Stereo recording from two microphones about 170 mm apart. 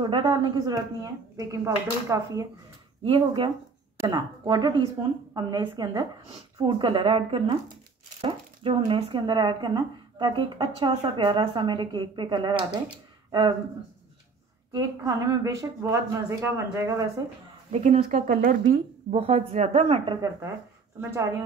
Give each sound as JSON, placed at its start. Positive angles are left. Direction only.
{"t": 0.0, "sound": "speech", "side_deg": -25}
{"t": 3.0, "sound": "speech", "side_deg": -35}
{"t": 14.8, "sound": "speech", "side_deg": -20}
{"t": 17.6, "sound": "speech", "side_deg": -40}
{"t": 21.0, "sound": "speech", "side_deg": -15}